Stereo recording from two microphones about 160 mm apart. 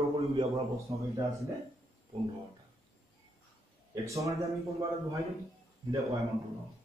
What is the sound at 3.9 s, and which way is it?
A man's voice, 20° right (ahead or behind).